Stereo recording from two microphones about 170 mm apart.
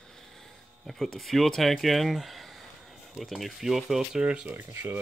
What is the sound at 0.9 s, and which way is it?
Speech, centre (ahead or behind).